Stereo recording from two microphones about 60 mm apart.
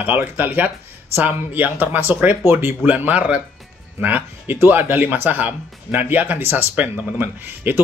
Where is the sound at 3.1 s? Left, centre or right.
Right.